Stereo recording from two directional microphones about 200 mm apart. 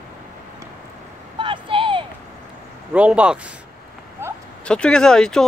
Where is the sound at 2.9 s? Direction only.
5° right (ahead or behind).